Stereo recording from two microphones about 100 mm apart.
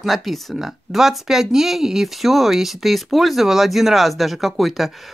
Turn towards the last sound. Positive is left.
turn(degrees=0)  # may be behind; listen again after turning